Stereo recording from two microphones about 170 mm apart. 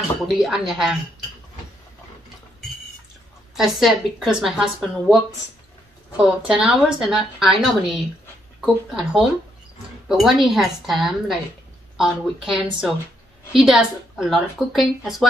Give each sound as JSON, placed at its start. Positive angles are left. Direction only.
{"t": 0.4, "sound": "a woman's voice", "side_deg": 0}
{"t": 3.5, "sound": "a woman's voice", "side_deg": 0}
{"t": 6.1, "sound": "a woman's voice", "side_deg": -5}